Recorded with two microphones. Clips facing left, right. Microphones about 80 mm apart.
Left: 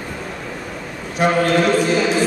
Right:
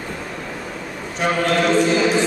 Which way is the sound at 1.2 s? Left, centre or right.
Centre.